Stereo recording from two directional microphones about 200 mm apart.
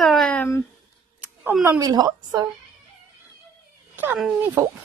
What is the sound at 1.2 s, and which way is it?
Speech, 10° right (ahead or behind).